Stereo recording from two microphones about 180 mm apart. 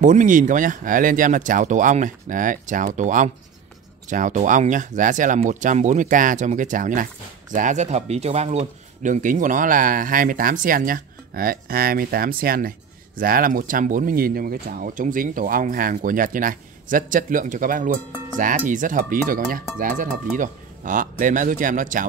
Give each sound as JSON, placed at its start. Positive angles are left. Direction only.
{"t": 0.0, "sound": "speech", "side_deg": -45}